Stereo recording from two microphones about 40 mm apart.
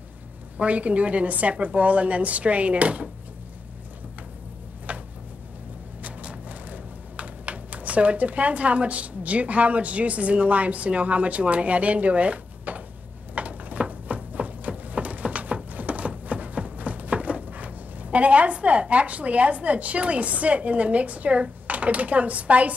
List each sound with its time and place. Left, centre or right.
0.6 s a woman's voice: right
4.9 s a sound: right
6.0 s typing: right
13.3 s a sound: right
16.3 s music: right
16.7 s a woman's voice: right